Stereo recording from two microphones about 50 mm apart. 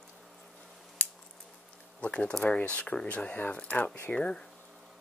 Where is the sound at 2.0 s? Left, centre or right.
Left.